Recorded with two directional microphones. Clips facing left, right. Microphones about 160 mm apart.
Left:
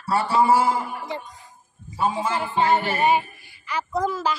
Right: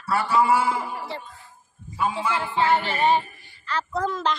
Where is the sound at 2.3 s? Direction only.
15° left (ahead or behind).